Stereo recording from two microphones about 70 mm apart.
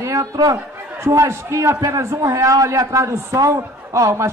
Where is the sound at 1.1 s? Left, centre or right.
Right.